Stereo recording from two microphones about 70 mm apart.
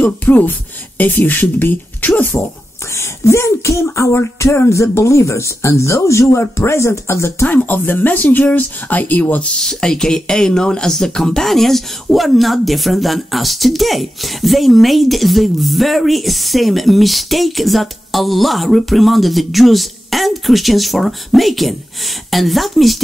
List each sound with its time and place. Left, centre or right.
0.2 s speech: left
3.0 s speech: left
7.4 s speech: left
9.6 s speech: centre